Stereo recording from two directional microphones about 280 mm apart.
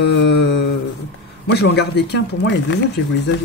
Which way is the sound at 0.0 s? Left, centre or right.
Left.